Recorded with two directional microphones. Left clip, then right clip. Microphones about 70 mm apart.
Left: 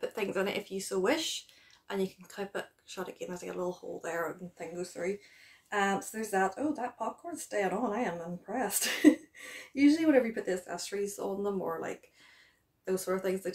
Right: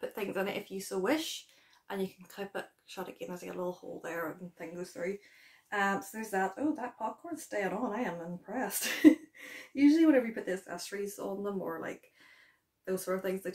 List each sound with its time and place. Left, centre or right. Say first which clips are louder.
0.0 s speech: left 3 dB; centre